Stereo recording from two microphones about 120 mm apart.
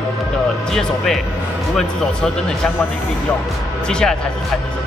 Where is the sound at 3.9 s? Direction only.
5° left (ahead or behind).